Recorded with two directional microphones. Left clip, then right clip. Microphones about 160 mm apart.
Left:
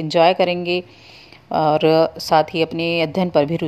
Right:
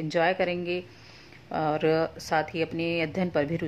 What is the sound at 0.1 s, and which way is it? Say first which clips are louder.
Speech: left 11 dB; 35° left (ahead or behind).